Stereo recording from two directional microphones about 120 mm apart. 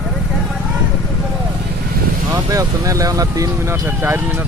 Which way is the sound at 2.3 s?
25° right (ahead or behind).